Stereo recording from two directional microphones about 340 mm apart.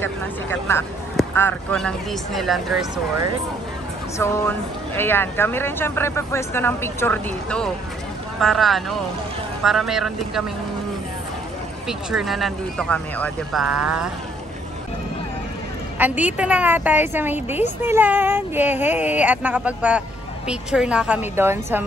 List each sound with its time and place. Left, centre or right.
0.0 s a woman's voice: centre
12.1 s a woman's voice: centre
16.0 s a woman's voice: centre